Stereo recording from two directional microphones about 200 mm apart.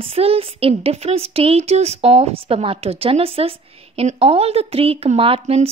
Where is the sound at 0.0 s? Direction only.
30° right (ahead or behind).